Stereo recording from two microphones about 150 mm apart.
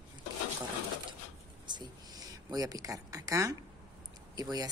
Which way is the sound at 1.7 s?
25° right (ahead or behind).